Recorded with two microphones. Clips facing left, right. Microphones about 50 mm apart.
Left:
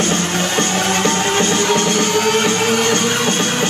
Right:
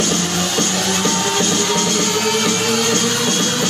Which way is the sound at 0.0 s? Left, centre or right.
Left.